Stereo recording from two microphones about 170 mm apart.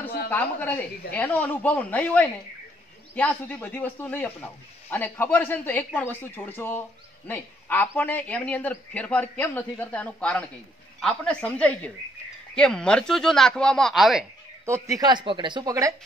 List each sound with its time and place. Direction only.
0.3 s speech: 10° left (ahead or behind)
14.7 s speech: 20° right (ahead or behind)